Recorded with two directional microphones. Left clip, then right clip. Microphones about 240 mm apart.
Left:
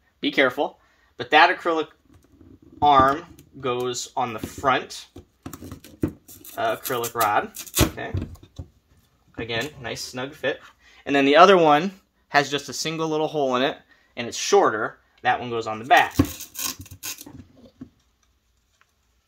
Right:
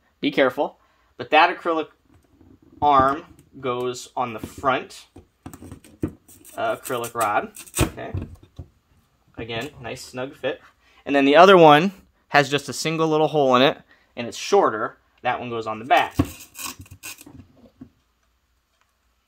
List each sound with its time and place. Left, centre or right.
0.2 s speech: right
2.9 s speech: right
5.1 s a sound: centre
6.9 s speech: centre
7.5 s speech: centre
8.1 s a sound: centre
9.3 s speech: centre
11.1 s speech: right
14.2 s speech: right
16.1 s a sound: centre